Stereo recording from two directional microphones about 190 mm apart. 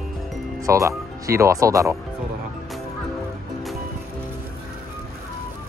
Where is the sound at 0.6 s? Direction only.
15° right (ahead or behind).